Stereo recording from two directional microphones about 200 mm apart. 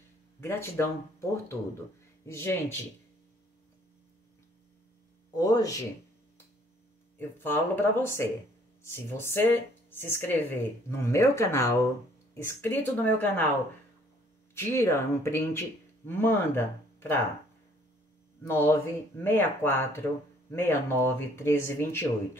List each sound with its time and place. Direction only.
0.4 s speech: 10° left (ahead or behind)
5.3 s speech: 20° left (ahead or behind)
7.2 s speech: 10° left (ahead or behind)
14.5 s speech: 15° left (ahead or behind)
18.4 s speech: 10° left (ahead or behind)